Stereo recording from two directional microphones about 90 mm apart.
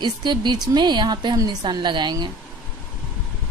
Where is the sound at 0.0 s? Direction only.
55° right (ahead or behind).